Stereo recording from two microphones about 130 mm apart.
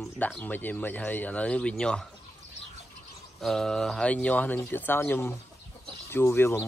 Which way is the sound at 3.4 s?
5° left (ahead or behind).